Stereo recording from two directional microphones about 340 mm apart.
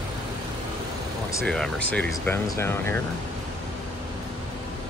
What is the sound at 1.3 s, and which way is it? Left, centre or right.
Speech, centre.